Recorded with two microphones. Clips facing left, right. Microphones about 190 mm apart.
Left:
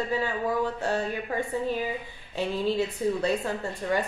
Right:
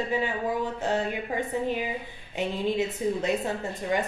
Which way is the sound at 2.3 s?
20° right (ahead or behind).